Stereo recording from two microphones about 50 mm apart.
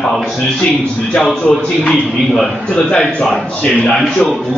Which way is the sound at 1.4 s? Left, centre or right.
Centre.